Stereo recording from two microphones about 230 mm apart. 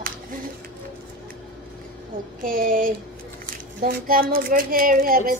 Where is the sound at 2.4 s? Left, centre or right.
Right.